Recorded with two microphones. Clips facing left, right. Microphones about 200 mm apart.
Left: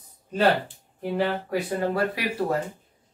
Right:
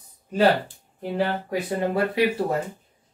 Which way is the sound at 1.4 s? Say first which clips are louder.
Right 1 dB; 25° right (ahead or behind).